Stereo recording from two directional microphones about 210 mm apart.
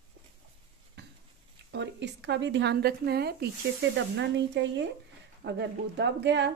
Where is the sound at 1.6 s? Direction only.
55° right (ahead or behind).